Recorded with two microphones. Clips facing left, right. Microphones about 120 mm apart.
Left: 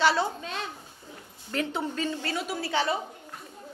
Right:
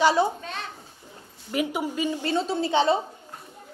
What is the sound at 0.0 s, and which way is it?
Speech, 15° right (ahead or behind).